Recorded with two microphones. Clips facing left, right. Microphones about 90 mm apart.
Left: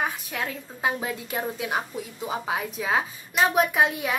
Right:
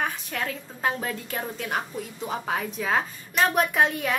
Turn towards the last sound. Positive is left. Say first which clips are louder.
# even
turn(degrees=5)  # may be behind; listen again after turning